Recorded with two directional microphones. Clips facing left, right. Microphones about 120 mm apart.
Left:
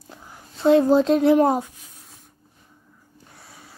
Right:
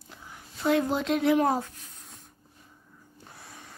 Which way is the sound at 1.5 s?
15° left (ahead or behind).